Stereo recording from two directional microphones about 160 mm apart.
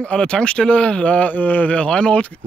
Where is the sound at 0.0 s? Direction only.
5° left (ahead or behind).